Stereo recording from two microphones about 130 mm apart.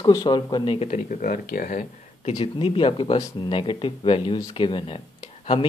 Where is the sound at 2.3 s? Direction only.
45° left (ahead or behind).